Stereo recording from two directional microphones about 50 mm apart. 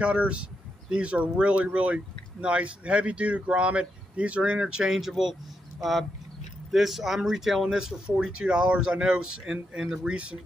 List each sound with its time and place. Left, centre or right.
0.0 s speech: right
4.9 s speech: centre